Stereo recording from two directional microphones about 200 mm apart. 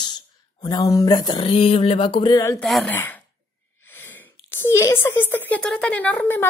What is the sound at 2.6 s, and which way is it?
Speech, 5° left (ahead or behind).